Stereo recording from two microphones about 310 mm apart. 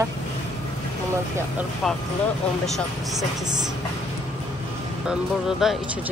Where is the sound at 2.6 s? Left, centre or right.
Centre.